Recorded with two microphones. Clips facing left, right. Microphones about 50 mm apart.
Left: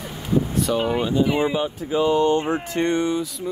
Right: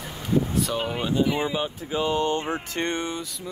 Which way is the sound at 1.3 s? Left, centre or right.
Left.